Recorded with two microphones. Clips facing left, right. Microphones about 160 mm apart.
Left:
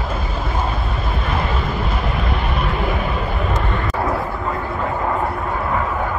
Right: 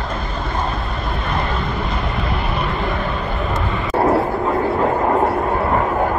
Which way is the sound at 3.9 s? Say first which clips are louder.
Right 10 dB; 40° right (ahead or behind).